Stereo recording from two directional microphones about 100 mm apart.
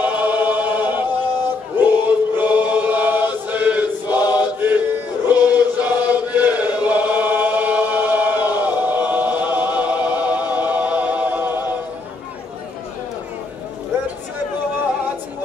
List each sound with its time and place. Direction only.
0.0 s choir: 15° right (ahead or behind)
2.0 s chant: 15° right (ahead or behind)